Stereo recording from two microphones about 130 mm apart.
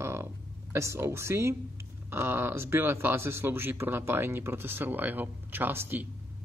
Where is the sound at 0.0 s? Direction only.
20° right (ahead or behind).